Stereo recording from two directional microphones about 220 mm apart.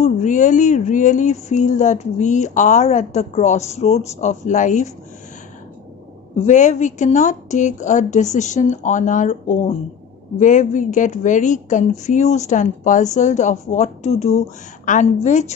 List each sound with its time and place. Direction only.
0.0 s speech: 35° left (ahead or behind)
6.3 s speech: 35° left (ahead or behind)